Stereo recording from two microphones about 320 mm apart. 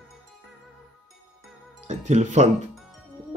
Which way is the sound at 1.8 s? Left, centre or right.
Right.